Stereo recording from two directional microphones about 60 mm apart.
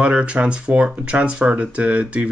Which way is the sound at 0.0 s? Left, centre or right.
Centre.